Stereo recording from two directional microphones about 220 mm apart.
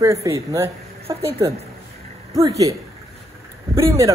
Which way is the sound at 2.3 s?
15° right (ahead or behind).